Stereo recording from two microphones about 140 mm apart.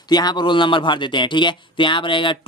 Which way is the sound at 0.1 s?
30° left (ahead or behind).